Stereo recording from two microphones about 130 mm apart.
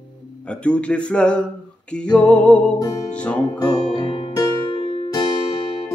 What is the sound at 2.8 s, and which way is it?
Music, 25° left (ahead or behind).